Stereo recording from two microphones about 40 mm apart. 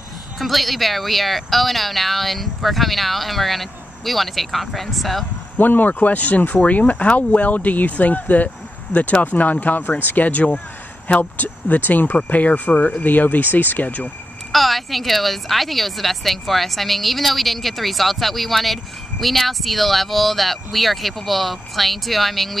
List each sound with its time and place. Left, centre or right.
0.4 s speech: centre
5.6 s speech: left
14.5 s speech: centre